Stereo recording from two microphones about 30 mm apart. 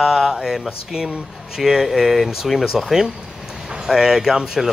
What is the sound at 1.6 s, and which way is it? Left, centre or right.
Speech, centre.